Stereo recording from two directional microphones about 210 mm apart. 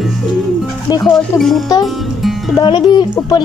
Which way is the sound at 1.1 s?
Centre (ahead or behind).